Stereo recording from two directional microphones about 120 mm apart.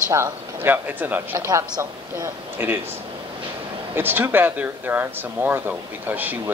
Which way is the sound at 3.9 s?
20° right (ahead or behind).